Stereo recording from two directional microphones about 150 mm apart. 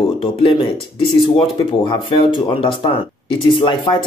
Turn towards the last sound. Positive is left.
turn(degrees=35)  # may be behind; listen again after turning